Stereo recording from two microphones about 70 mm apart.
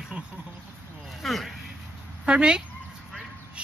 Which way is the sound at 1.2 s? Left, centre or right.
Centre.